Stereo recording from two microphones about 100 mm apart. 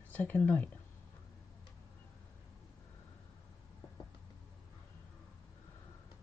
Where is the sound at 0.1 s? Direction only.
15° left (ahead or behind).